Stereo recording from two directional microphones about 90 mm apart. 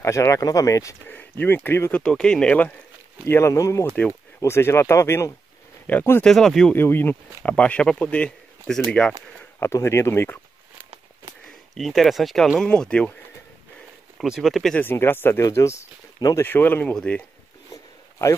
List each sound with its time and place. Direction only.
0.0 s speech: 35° left (ahead or behind)
1.0 s speech: 20° left (ahead or behind)
2.0 s speech: 10° left (ahead or behind)
3.3 s speech: 30° left (ahead or behind)
5.9 s speech: 20° left (ahead or behind)
6.2 s speech: 5° left (ahead or behind)
6.7 s speech: 25° left (ahead or behind); by 8.8 s 10° left (ahead or behind)
9.6 s speech: 30° left (ahead or behind)
11.4 s speech: 5° left (ahead or behind)
14.1 s speech: 5° right (ahead or behind)
14.8 s speech: 25° left (ahead or behind)
15.4 s speech: 35° left (ahead or behind)
16.3 s speech: 20° left (ahead or behind)